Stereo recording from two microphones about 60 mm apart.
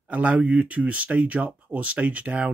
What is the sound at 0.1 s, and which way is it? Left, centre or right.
Speech, right.